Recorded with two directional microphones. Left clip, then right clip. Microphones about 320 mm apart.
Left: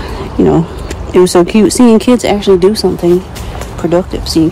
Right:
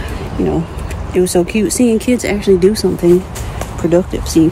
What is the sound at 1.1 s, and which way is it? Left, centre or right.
Speech, left.